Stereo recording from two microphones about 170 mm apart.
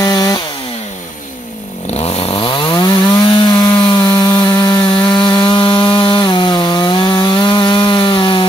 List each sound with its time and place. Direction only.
0.0 s chainsaw: 20° left (ahead or behind)
2.0 s chainsaw: 35° left (ahead or behind)
3.4 s sawing: 25° left (ahead or behind)